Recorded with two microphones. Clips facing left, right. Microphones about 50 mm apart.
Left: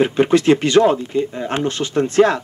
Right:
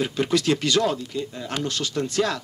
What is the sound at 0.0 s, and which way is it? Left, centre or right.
Speech, left.